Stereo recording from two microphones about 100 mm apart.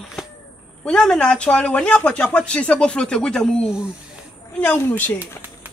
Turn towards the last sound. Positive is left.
turn(degrees=20)  # may be behind; listen again after turning